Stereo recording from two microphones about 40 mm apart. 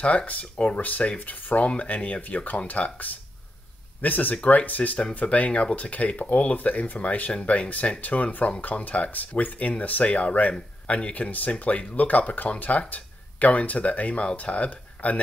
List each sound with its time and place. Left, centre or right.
0.0 s speech: left
0.7 s speech: left